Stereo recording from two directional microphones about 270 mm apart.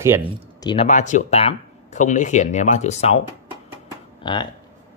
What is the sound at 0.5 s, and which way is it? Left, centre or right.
Speech, centre.